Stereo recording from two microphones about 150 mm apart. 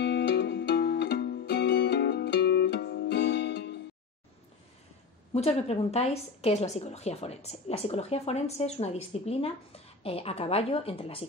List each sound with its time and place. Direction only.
0.0 s music: 90° left
5.3 s a woman's voice: 45° left (ahead or behind)